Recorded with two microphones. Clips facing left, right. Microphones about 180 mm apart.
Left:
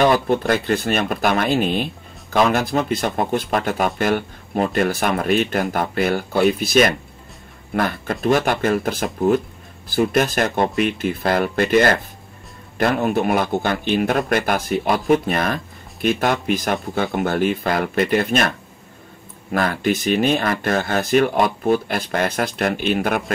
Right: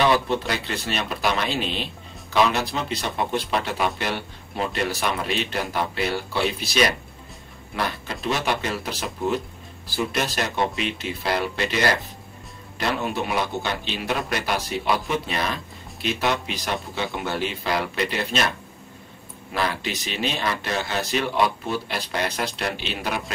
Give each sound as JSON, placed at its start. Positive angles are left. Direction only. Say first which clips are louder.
{"t": 0.0, "sound": "a man's voice", "louder": "left 4 dB", "side_deg": 50}
{"t": 19.5, "sound": "a man's voice", "louder": "left 7 dB", "side_deg": 50}